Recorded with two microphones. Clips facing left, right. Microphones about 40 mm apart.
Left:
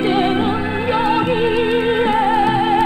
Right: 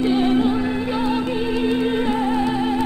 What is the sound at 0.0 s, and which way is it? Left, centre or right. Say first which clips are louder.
Music: left 2 dB; left.